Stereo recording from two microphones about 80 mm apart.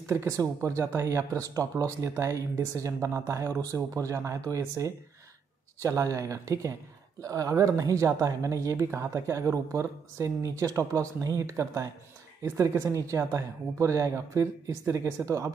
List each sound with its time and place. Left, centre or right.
0.0 s speech: right